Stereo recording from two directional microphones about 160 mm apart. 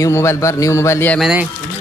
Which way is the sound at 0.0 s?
15° left (ahead or behind).